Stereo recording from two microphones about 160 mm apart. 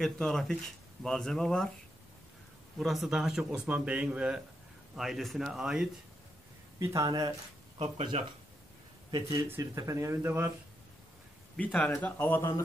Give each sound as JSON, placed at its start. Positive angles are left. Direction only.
{"t": 0.0, "sound": "a man's voice", "side_deg": 0}
{"t": 2.8, "sound": "a man's voice", "side_deg": 0}
{"t": 6.8, "sound": "speech", "side_deg": -20}
{"t": 7.8, "sound": "speech", "side_deg": -35}
{"t": 9.1, "sound": "speech", "side_deg": -25}
{"t": 11.5, "sound": "speech", "side_deg": 10}